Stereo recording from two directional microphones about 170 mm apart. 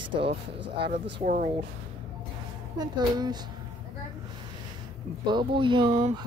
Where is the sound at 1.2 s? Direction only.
50° right (ahead or behind).